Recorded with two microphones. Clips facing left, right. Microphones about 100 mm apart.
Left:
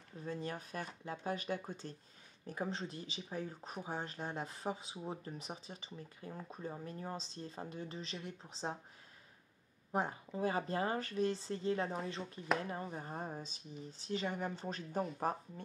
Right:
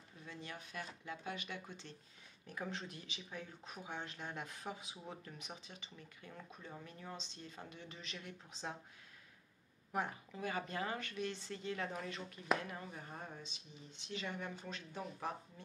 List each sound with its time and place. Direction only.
0.2 s speech: 40° left (ahead or behind)
9.9 s speech: 30° left (ahead or behind)